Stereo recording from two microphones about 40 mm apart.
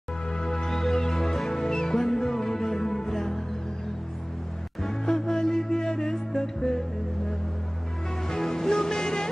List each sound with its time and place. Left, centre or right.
0.6 s music: centre
4.8 s music: centre
8.3 s music: centre